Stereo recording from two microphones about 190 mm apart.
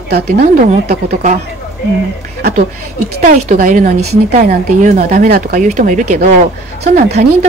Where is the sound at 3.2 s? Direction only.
45° right (ahead or behind).